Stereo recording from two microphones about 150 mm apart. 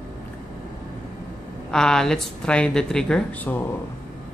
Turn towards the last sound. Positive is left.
turn(degrees=10)  # may be behind; listen again after turning